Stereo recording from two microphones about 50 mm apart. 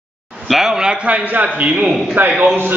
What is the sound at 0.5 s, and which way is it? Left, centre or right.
Speech, centre.